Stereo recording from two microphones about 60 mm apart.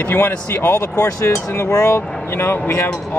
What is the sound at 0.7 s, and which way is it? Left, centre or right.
Speech, left.